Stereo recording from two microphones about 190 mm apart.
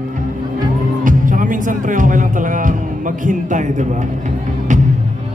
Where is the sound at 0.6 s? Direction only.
45° right (ahead or behind).